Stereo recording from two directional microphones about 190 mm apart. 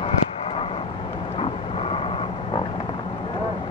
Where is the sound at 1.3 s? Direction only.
30° left (ahead or behind).